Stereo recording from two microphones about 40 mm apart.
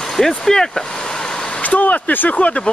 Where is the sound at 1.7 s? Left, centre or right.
Left.